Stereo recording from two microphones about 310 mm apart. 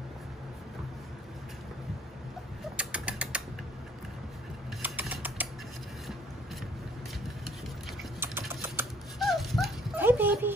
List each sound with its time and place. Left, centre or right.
2.8 s ratchet: centre
4.8 s typing: centre
8.0 s dog: centre